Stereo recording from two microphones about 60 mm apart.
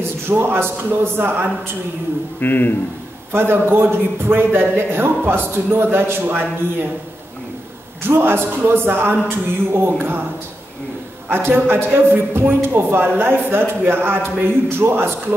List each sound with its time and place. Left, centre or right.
0.3 s speech: right
2.4 s a man's voice: left
3.3 s speech: right
8.0 s speech: right
11.2 s speech: right